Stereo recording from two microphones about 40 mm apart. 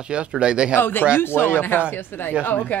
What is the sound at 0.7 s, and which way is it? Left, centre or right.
Speech, left.